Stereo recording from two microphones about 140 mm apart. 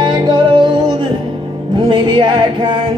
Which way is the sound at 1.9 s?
35° right (ahead or behind).